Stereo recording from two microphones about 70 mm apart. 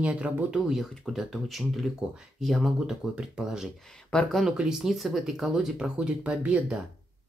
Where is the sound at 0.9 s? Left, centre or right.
Centre.